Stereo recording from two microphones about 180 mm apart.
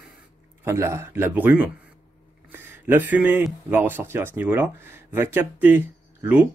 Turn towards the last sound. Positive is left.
turn(degrees=-10)  # may be behind; listen again after turning